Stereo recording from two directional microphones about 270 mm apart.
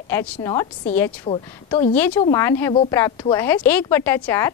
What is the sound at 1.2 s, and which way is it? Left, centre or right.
Speech, centre.